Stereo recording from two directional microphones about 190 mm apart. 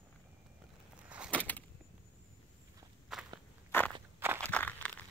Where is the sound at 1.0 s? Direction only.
5° right (ahead or behind).